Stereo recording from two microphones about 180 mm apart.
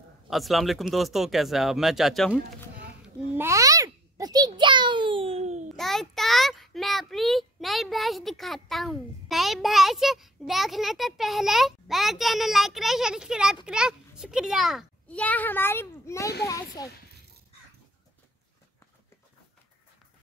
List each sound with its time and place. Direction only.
0.3 s a child's voice: centre (ahead or behind)
3.3 s a sound: 15° right (ahead or behind); by 5.7 s 40° right (ahead or behind)
5.8 s a child's voice: centre (ahead or behind); by 16.9 s 20° left (ahead or behind)